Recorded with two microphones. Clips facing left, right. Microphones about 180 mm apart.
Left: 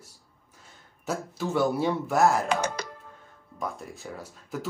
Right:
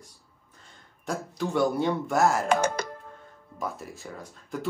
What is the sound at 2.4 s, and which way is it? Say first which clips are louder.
Speech: right 3 dB; 50° right (ahead or behind).